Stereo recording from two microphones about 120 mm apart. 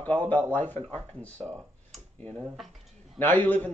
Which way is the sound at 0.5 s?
15° left (ahead or behind).